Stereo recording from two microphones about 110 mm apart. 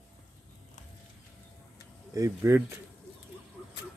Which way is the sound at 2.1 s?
25° right (ahead or behind).